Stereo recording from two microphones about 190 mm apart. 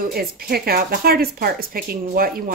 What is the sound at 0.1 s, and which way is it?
Speech, 50° right (ahead or behind).